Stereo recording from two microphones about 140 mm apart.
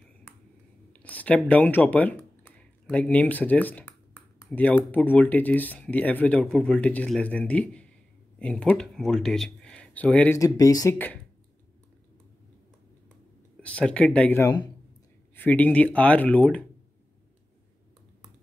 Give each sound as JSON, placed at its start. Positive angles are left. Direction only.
{"t": 0.9, "sound": "speech", "side_deg": 10}
{"t": 10.4, "sound": "speech", "side_deg": 25}
{"t": 13.6, "sound": "speech", "side_deg": 10}
{"t": 14.4, "sound": "speech", "side_deg": 30}
{"t": 15.3, "sound": "speech", "side_deg": 15}